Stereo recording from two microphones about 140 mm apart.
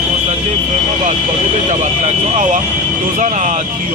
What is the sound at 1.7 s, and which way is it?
Vehicle, 65° right (ahead or behind).